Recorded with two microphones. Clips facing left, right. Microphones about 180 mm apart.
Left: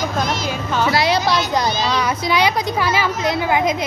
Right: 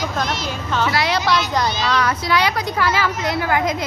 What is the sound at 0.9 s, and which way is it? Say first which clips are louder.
Speech: left 3 dB; 35° left (ahead or behind).